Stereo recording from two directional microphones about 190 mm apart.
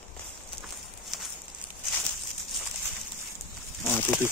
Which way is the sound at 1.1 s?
Centre (ahead or behind).